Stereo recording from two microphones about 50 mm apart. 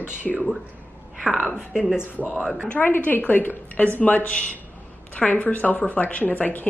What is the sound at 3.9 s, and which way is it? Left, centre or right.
A woman's voice, left.